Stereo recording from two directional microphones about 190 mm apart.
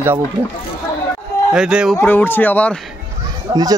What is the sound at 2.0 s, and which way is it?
Speech, 10° left (ahead or behind).